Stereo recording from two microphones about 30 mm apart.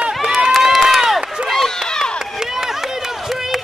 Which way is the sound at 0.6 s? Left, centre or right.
Centre.